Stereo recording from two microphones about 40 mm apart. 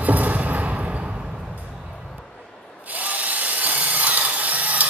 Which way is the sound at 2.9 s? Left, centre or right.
Right.